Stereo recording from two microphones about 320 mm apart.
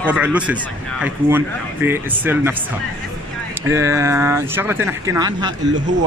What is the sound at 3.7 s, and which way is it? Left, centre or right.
A man's voice, centre.